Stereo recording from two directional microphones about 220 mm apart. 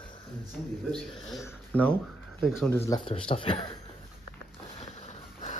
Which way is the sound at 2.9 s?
25° left (ahead or behind).